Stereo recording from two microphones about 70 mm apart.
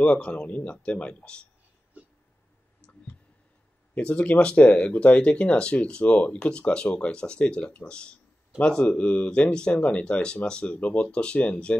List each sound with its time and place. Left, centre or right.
0.0 s speech: centre
3.9 s speech: centre